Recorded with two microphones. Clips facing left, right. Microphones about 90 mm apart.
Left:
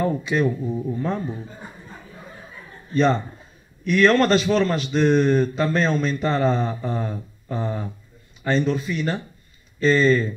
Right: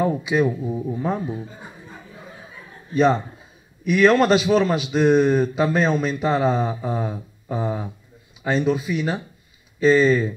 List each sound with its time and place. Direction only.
0.0 s a man's voice: 10° right (ahead or behind)
2.9 s a man's voice: 5° right (ahead or behind)